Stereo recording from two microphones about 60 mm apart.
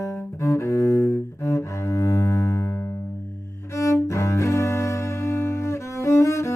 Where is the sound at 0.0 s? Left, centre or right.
Left.